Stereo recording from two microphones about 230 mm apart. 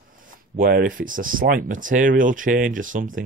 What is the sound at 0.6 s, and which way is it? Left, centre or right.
Speech, right.